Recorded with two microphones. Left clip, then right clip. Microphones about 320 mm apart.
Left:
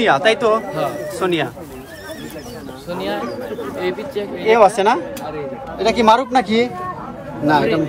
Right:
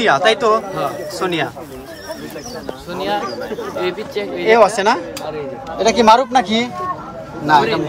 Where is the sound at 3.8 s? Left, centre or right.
Right.